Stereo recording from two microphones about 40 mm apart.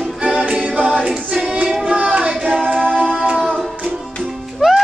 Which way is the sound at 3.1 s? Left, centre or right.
Centre.